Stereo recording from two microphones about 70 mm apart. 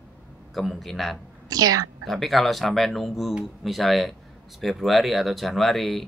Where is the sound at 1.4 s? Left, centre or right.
Right.